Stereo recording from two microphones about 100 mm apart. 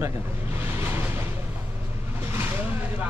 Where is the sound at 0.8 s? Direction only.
25° right (ahead or behind).